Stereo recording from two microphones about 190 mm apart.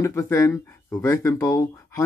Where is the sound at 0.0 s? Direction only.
15° left (ahead or behind).